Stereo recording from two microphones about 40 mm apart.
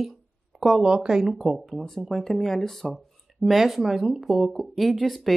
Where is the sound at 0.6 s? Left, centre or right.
Centre.